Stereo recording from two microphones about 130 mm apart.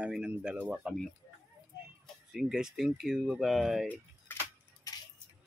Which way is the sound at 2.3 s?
5° right (ahead or behind).